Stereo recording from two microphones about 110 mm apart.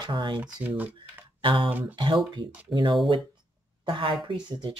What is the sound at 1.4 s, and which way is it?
Speech, 50° right (ahead or behind).